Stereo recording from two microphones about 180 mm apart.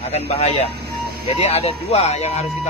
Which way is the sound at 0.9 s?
35° left (ahead or behind).